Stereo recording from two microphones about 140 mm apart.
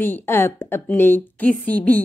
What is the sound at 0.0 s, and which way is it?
A woman's voice, 15° left (ahead or behind).